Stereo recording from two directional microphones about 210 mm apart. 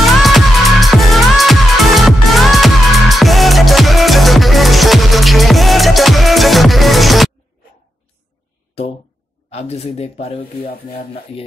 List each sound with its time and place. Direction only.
0.0 s music: centre (ahead or behind)
9.5 s speech: 30° left (ahead or behind)